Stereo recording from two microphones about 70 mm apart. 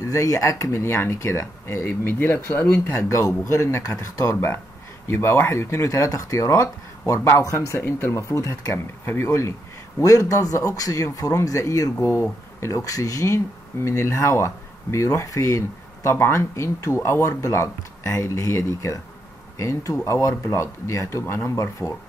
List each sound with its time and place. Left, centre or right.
0.0 s speech: left
2.9 s speech: left
5.0 s speech: left
5.9 s speech: left
7.8 s speech: left
8.2 s speech: left
12.8 s speech: left